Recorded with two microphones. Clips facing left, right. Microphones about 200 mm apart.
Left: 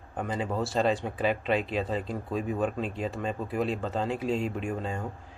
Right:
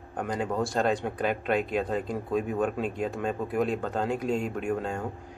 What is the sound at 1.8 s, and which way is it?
Speech, centre (ahead or behind).